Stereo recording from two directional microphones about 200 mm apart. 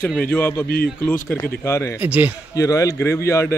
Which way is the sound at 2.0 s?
10° right (ahead or behind).